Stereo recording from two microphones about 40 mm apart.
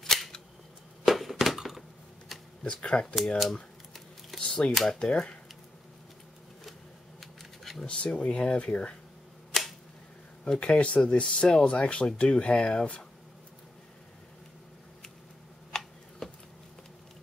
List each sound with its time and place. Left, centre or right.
0.0 s camera: centre
1.0 s a sound: centre
2.6 s speech: left
4.4 s computer keyboard: left
5.0 s speech: left
7.2 s shuffling cards: centre
7.8 s speech: left
9.5 s a sound: centre
10.4 s speech: left
15.7 s tick-tock: centre
16.2 s a sound: centre